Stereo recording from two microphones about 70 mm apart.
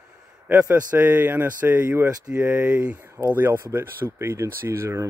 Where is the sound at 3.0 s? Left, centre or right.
Right.